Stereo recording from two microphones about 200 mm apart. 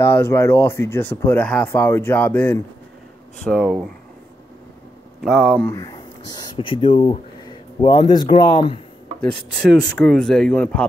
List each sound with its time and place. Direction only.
0.0 s speech: 10° left (ahead or behind)
5.2 s speech: centre (ahead or behind)
5.7 s speech: 15° left (ahead or behind)
9.5 s speech: 5° left (ahead or behind)